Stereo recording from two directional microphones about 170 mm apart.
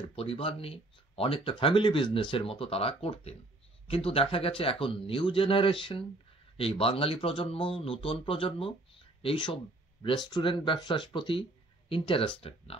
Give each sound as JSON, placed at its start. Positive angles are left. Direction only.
{"t": 0.1, "sound": "speech", "side_deg": 35}